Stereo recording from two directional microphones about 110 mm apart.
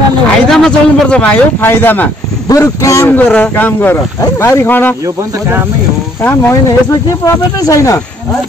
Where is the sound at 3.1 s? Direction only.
15° left (ahead or behind).